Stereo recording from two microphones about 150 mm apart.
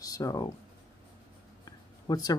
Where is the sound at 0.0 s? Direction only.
25° left (ahead or behind).